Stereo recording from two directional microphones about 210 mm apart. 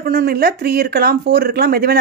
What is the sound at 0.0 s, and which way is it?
A woman's voice, 45° right (ahead or behind).